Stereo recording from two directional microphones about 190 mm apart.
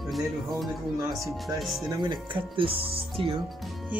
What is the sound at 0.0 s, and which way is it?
Speech, centre (ahead or behind).